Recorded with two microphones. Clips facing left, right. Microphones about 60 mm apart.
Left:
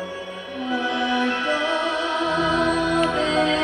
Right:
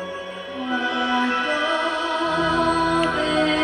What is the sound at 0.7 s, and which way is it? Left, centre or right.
Music, centre.